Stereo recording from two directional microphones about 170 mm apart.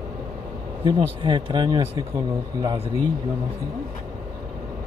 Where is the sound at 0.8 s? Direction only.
25° right (ahead or behind).